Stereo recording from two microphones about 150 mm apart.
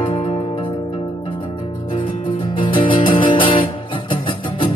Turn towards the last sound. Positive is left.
turn(degrees=35)  # may be behind; listen again after turning